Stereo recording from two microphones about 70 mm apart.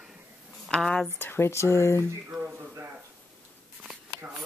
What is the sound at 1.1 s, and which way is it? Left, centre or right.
Speech, left.